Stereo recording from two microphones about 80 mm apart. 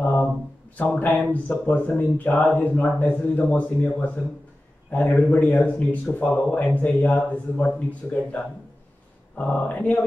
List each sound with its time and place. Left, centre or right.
0.0 s mantra: centre
0.7 s speech: left
9.4 s speech: left